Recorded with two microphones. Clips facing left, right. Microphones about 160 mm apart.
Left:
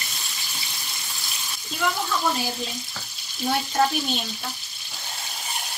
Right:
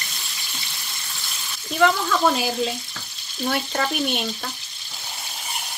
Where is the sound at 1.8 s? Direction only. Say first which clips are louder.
Right 7 dB; 90° right.